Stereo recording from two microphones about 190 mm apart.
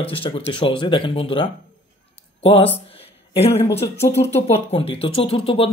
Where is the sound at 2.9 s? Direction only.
30° left (ahead or behind).